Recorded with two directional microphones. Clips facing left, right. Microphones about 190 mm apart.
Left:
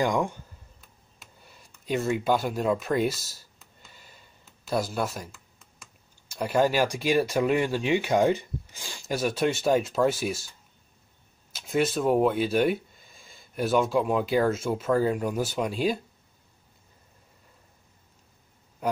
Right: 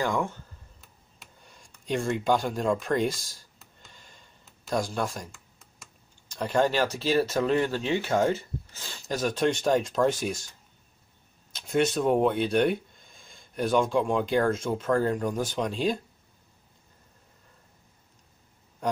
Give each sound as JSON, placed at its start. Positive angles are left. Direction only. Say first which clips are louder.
{"t": 0.0, "sound": "speech", "louder": "left 3 dB", "side_deg": 15}
{"t": 0.7, "sound": "speech", "louder": "even", "side_deg": 5}
{"t": 11.5, "sound": "speech", "louder": "right 1 dB", "side_deg": 0}
{"t": 18.8, "sound": "a sound", "louder": "left 1 dB", "side_deg": 5}